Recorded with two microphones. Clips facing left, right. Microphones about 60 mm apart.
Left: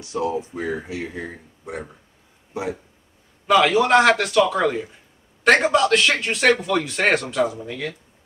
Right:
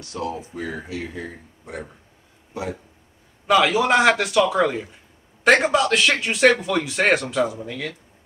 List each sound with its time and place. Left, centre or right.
0.0 s speech: centre
3.4 s a man's voice: centre